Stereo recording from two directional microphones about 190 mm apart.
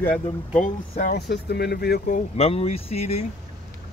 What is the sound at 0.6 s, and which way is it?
Speech, 50° left (ahead or behind).